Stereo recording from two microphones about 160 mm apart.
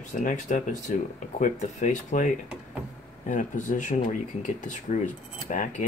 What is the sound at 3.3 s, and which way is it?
Speech, 55° left (ahead or behind).